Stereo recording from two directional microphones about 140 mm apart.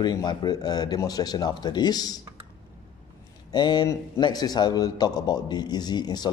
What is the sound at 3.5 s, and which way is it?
A man's voice, 30° left (ahead or behind).